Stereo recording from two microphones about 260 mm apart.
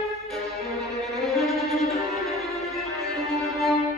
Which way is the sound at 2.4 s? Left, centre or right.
Centre.